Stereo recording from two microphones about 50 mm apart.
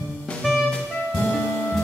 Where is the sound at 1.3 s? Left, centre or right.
Centre.